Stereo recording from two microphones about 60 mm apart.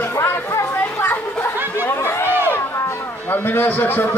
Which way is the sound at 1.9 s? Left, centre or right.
Left.